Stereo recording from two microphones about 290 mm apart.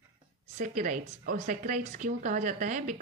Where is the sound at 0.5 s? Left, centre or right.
Right.